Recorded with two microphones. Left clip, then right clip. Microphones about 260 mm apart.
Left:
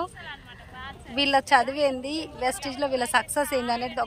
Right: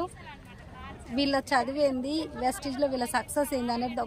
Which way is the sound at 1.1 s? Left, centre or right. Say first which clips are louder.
Left 6 dB; centre.